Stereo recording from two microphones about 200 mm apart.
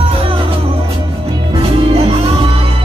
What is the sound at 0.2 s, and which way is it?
Music, 25° right (ahead or behind).